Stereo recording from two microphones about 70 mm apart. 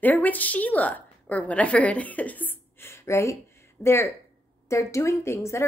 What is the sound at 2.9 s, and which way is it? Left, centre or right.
A woman's voice, left.